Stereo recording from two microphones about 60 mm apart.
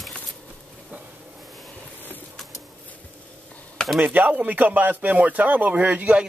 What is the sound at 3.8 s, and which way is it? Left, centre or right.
Chop, centre.